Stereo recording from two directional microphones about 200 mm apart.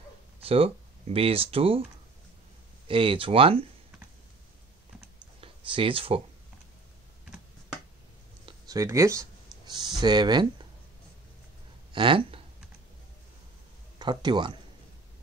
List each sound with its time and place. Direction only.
0.5 s speech: 30° right (ahead or behind)
2.9 s speech: 25° right (ahead or behind)
5.4 s speech: 25° right (ahead or behind)
8.5 s speech: 20° right (ahead or behind)
11.9 s speech: 25° right (ahead or behind)
13.9 s speech: 20° right (ahead or behind)